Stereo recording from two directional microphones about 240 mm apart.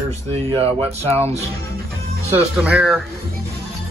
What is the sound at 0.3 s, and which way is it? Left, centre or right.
Speech, right.